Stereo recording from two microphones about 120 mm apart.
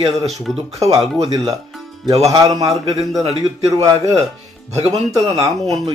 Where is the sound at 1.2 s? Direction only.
30° right (ahead or behind).